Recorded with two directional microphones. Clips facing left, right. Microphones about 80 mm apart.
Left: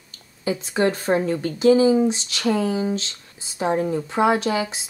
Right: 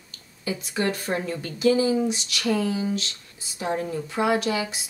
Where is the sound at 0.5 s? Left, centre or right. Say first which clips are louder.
Left 5 dB; left.